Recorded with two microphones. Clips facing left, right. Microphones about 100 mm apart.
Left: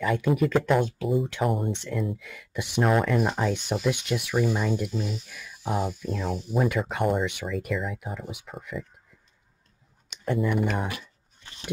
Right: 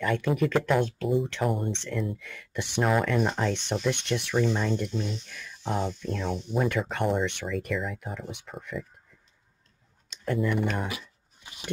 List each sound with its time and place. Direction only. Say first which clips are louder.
0.0 s speech: left 2 dB; 5° left (ahead or behind)
10.2 s speech: left 1 dB; 5° left (ahead or behind)
11.4 s a sound: even; 15° right (ahead or behind)